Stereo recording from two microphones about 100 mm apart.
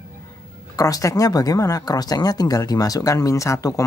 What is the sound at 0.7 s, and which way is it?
Speech, 35° left (ahead or behind).